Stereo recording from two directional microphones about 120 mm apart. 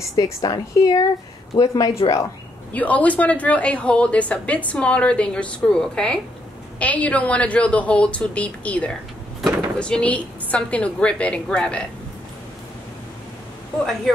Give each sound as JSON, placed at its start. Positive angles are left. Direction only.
{"t": 0.1, "sound": "a woman's voice", "side_deg": 30}
{"t": 2.7, "sound": "a woman's voice", "side_deg": 10}
{"t": 14.1, "sound": "a woman's voice", "side_deg": 5}